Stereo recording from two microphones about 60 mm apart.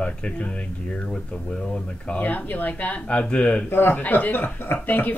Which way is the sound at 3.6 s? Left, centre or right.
Left.